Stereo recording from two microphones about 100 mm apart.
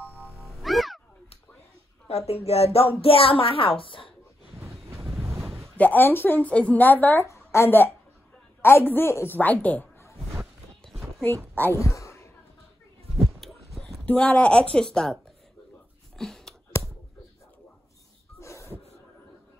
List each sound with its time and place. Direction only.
0.0 s music: centre (ahead or behind)
2.0 s speech: 90° left
3.0 s a woman's voice: 70° left (ahead or behind)
4.8 s wind noise: 30° right (ahead or behind)
5.8 s a woman's voice: 20° left (ahead or behind)
10.3 s music: 5° right (ahead or behind)
11.5 s speech: 20° left (ahead or behind)
11.8 s a sound: 30° left (ahead or behind)
13.2 s a sound: centre (ahead or behind)
14.0 s speech: 15° left (ahead or behind)
16.2 s a sound: 5° left (ahead or behind)
18.4 s a sound: 30° left (ahead or behind)